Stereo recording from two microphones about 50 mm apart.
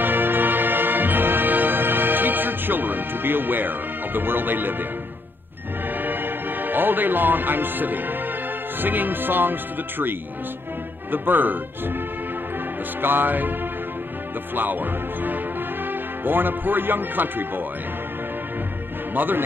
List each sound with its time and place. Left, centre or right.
0.0 s music: right
5.9 s music: right
8.8 s speech: right
13.0 s a man's voice: right
19.1 s speech: right